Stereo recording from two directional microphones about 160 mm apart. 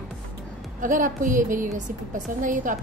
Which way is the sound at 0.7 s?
55° right (ahead or behind).